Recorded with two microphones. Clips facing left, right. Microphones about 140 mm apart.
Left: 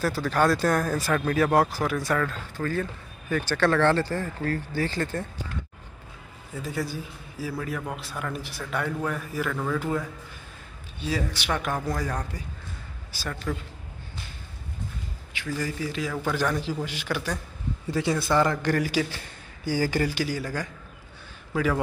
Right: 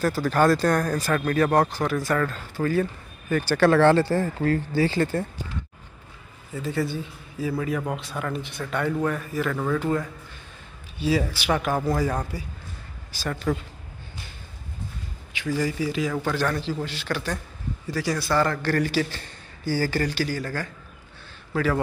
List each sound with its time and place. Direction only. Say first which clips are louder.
0.0 s a man's voice: right 3 dB; centre (ahead or behind)
6.5 s a man's voice: right 4 dB; centre (ahead or behind)
13.5 s a man's voice: right 6 dB; 35° right (ahead or behind)
15.3 s speech: right 5 dB; 10° right (ahead or behind)
16.3 s a man's voice: right 1 dB; 10° left (ahead or behind)
17.9 s a man's voice: even; 25° left (ahead or behind)